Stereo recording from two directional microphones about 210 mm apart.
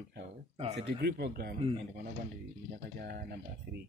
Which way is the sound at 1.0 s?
50° right (ahead or behind).